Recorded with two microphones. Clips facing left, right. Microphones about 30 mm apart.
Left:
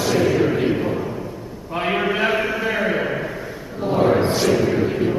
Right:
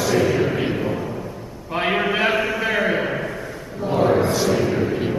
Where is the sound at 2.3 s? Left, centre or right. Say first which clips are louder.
Even; centre.